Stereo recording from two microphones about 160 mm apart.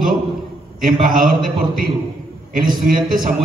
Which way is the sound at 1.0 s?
65° right (ahead or behind).